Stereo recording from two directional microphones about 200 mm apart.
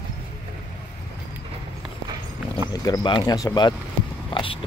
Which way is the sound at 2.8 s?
20° left (ahead or behind).